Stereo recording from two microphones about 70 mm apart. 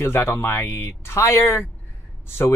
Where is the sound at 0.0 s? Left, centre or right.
Left.